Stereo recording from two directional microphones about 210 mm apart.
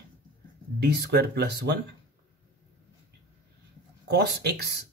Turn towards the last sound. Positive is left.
turn(degrees=-50)  # may be behind; listen again after turning